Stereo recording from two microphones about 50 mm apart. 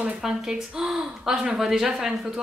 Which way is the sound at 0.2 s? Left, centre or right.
Centre.